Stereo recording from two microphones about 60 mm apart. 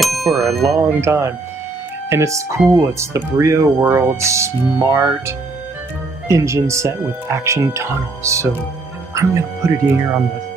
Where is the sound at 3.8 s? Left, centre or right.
Right.